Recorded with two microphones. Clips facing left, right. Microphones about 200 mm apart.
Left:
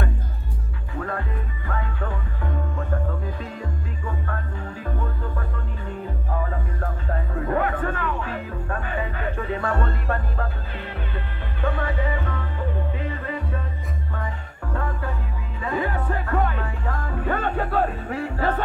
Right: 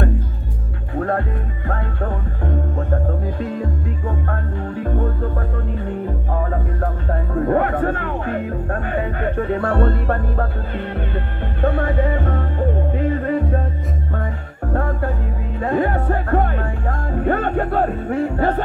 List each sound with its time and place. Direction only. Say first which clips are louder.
0.9 s music: right 8 dB; 50° right (ahead or behind)
4.8 s music: right 8 dB; 50° right (ahead or behind)
6.3 s music: right 4 dB; 50° right (ahead or behind)
11.6 s music: right 7 dB; 50° right (ahead or behind)
14.7 s music: right 7 dB; 45° right (ahead or behind)